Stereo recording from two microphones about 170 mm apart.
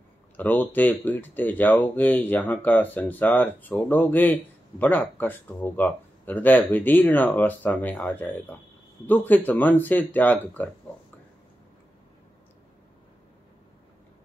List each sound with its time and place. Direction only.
0.4 s speech: 10° left (ahead or behind)